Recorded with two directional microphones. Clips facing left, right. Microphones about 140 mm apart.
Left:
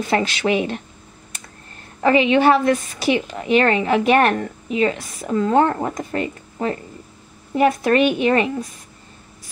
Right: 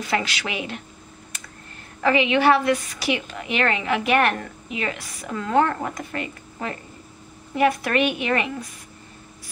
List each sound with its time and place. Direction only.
0.4 s a woman's voice: 30° left (ahead or behind)
2.0 s a woman's voice: 30° left (ahead or behind)